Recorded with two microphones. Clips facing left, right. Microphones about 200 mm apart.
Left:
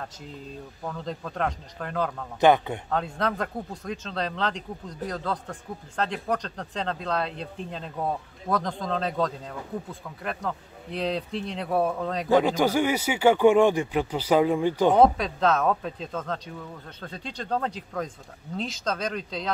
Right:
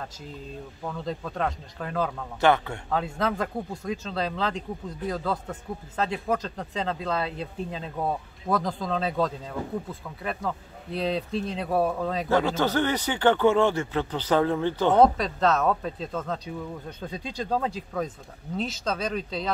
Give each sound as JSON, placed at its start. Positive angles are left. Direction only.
{"t": 0.8, "sound": "speech", "side_deg": 0}
{"t": 2.4, "sound": "speech", "side_deg": 20}
{"t": 2.9, "sound": "speech", "side_deg": 0}
{"t": 12.3, "sound": "speech", "side_deg": 15}
{"t": 15.0, "sound": "speech", "side_deg": 0}